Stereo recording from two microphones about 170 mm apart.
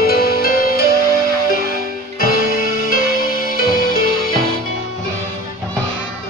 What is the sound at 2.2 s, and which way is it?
Music, 60° left (ahead or behind).